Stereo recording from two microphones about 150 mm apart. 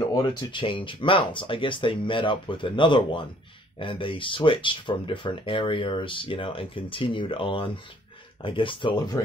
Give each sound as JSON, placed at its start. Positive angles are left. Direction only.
{"t": 0.0, "sound": "speech", "side_deg": 30}